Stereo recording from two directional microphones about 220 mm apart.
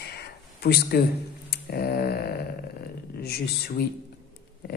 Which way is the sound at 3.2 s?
45° left (ahead or behind).